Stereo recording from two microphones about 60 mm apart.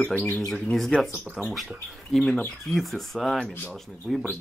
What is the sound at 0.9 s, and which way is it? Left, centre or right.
Speech, centre.